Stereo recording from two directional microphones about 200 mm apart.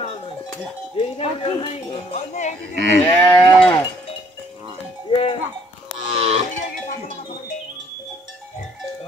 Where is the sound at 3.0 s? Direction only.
15° left (ahead or behind).